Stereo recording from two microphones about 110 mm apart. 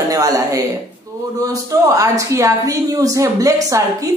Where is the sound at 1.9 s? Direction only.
30° right (ahead or behind).